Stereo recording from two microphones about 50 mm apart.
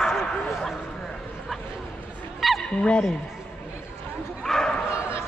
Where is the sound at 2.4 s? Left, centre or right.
Centre.